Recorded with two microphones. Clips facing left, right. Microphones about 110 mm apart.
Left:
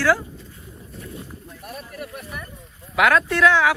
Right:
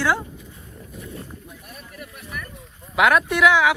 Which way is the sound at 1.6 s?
60° left (ahead or behind).